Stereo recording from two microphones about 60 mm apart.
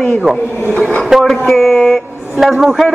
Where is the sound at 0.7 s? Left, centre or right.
Centre.